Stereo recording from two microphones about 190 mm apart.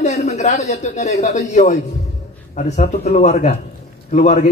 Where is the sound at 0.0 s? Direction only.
40° left (ahead or behind).